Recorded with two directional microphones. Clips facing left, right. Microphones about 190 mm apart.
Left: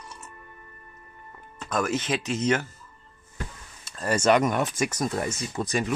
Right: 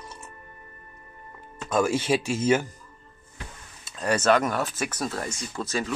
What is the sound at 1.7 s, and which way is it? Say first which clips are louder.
Speech: right 4 dB; 10° right (ahead or behind).